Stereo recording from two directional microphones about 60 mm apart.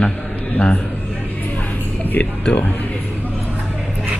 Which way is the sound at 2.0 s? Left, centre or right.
Left.